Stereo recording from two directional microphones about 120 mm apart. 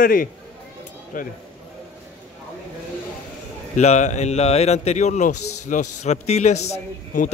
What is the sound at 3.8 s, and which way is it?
A man's voice, 75° left (ahead or behind).